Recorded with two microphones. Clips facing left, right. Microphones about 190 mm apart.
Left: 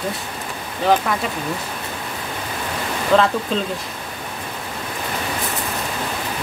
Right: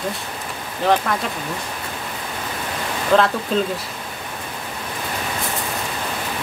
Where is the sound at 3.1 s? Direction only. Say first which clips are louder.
Even; centre (ahead or behind).